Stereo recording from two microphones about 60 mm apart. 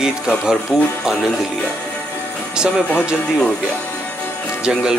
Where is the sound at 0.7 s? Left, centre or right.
Centre.